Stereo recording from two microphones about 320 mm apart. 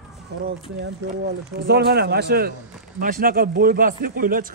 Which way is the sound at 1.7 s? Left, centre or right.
Right.